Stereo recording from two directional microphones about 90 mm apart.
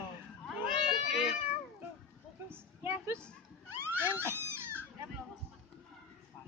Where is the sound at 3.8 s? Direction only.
25° right (ahead or behind).